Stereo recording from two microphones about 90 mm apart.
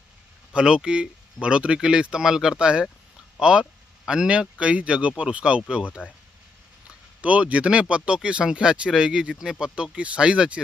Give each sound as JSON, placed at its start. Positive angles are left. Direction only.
{"t": 0.5, "sound": "speech", "side_deg": -10}
{"t": 6.0, "sound": "speech", "side_deg": 20}
{"t": 7.2, "sound": "speech", "side_deg": -15}